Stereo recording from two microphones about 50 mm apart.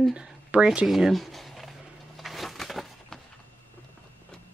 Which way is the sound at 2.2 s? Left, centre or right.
Centre.